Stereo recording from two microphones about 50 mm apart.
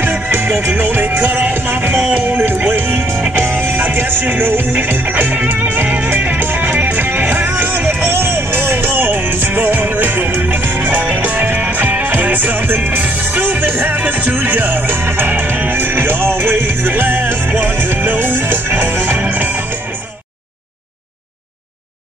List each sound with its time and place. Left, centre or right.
0.0 s music: right
2.0 s music: right
2.6 s music: right